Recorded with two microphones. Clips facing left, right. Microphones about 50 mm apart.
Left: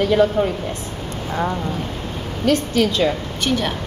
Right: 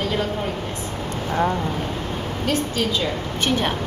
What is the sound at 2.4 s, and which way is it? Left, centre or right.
Speech, left.